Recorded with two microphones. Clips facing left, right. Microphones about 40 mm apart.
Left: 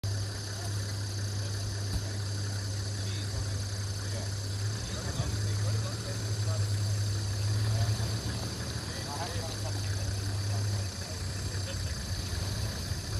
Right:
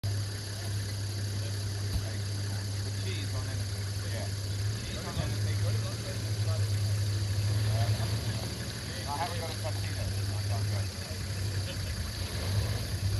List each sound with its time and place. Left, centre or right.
7.7 s vehicle: centre